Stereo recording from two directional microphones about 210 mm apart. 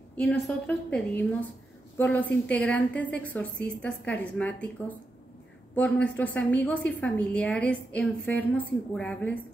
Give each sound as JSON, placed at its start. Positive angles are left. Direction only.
{"t": 0.2, "sound": "a woman's voice", "side_deg": 5}